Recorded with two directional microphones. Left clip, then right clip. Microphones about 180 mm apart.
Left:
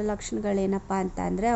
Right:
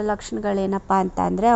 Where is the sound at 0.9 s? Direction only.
30° right (ahead or behind).